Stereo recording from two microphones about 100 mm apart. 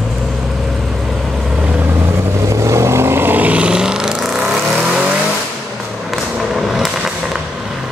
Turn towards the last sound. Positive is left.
turn(degrees=-5)  # may be behind; listen again after turning